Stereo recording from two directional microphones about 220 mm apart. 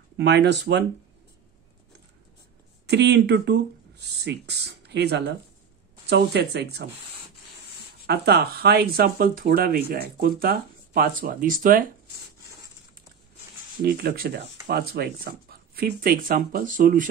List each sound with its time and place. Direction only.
0.2 s speech: 50° right (ahead or behind)
2.9 s speech: 50° right (ahead or behind)
8.1 s speech: 45° right (ahead or behind)
13.8 s speech: 45° right (ahead or behind)